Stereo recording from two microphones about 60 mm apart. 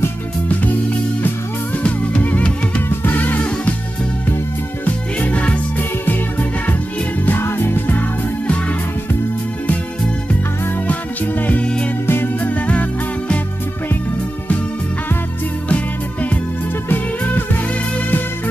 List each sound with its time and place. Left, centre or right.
1.8 s music: left
4.8 s music: left
7.2 s music: left
11.4 s music: left
15.7 s music: left